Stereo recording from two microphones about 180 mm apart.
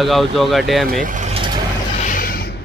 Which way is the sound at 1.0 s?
45° right (ahead or behind).